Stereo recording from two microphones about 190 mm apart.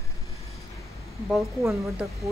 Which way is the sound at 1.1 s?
Centre (ahead or behind).